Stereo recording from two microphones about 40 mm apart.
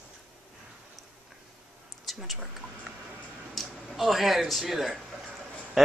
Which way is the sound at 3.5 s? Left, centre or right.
Centre.